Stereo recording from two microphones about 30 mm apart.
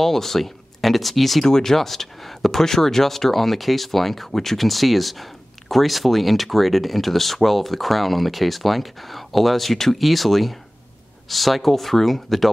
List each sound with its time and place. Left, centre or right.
0.0 s speech: centre
1.4 s speech: centre